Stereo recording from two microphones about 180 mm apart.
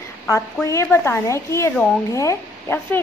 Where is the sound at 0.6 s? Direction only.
15° left (ahead or behind).